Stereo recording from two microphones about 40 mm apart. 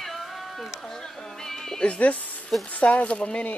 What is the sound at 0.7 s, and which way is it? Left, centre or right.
Speech, centre.